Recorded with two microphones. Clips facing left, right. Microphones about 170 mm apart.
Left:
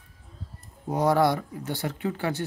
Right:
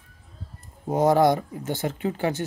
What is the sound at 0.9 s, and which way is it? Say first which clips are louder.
Speech: right 3 dB; 20° right (ahead or behind).